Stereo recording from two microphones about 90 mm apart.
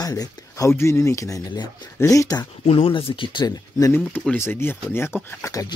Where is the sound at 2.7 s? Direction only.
90° left.